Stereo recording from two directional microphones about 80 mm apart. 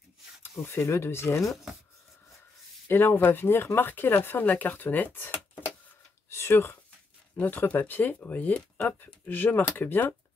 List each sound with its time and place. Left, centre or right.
0.4 s speech: left
1.4 s speech: centre
2.9 s speech: left
6.3 s a sound: left
7.3 s speech: left